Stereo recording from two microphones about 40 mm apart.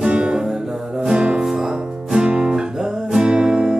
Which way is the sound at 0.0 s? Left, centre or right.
Right.